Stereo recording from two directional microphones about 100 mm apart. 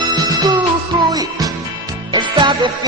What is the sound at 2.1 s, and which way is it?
Music, 50° right (ahead or behind).